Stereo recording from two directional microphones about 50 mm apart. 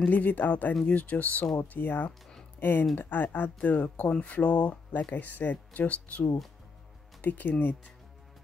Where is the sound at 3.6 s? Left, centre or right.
Left.